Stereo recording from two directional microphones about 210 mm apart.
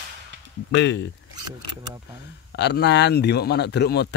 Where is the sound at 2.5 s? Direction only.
50° left (ahead or behind).